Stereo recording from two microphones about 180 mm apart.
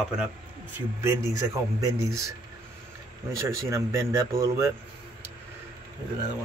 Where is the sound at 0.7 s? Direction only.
15° right (ahead or behind).